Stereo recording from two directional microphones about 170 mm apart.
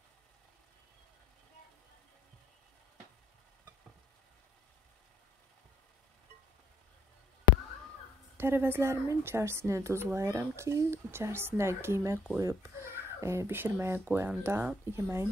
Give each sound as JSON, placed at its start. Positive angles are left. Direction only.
{"t": 8.4, "sound": "a woman's voice", "side_deg": -15}